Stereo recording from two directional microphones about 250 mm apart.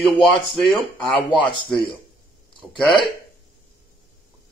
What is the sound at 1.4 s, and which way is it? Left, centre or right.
Speech, centre.